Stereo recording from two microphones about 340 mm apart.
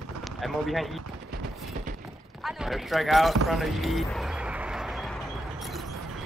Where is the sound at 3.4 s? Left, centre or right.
Centre.